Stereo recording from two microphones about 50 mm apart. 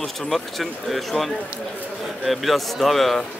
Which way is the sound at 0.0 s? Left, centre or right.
Centre.